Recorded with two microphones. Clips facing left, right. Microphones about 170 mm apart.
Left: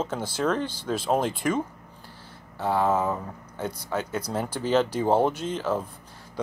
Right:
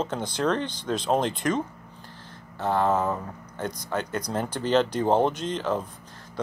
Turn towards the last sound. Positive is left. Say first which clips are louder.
# even
turn(degrees=5)  # may be behind; listen again after turning